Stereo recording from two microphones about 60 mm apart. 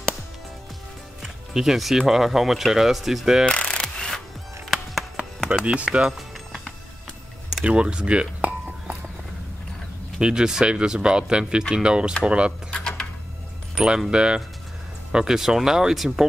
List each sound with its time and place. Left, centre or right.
1.2 s speech: centre
3.4 s mechanisms: centre
3.8 s music: centre
5.7 s speech: centre
6.1 s music: centre
7.6 s a sound: centre
10.1 s speech: centre
12.7 s a sound: centre
13.7 s speech: centre